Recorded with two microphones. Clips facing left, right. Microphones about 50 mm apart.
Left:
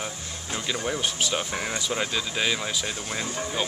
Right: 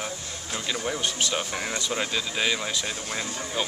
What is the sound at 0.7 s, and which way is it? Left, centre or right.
Speech, centre.